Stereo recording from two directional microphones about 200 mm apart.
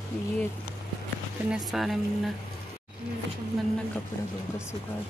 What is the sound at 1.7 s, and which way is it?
Speech, centre (ahead or behind).